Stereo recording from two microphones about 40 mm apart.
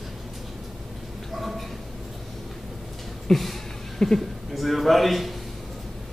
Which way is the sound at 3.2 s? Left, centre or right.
Centre.